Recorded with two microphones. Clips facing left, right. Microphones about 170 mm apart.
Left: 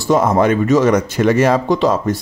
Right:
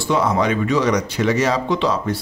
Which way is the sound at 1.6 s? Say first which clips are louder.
Left 5 dB; 40° left (ahead or behind).